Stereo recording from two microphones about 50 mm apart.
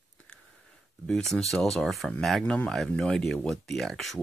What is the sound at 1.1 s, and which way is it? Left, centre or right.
Speech, centre.